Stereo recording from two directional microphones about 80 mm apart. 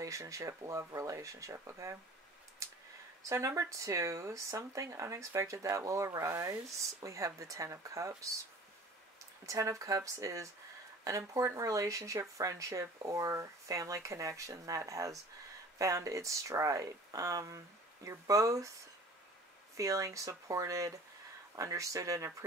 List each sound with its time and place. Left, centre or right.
0.0 s speech: right
2.6 s a sound: right
3.3 s speech: right
9.5 s speech: right
19.8 s speech: right